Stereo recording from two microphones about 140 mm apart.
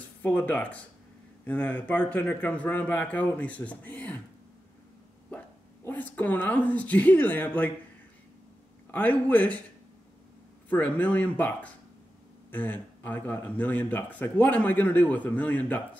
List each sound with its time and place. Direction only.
0.2 s speech: 10° left (ahead or behind)
5.9 s speech: 10° left (ahead or behind)
8.9 s speech: 10° left (ahead or behind)
10.7 s speech: 10° left (ahead or behind)